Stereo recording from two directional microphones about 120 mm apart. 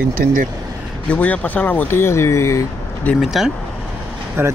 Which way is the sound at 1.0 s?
10° left (ahead or behind).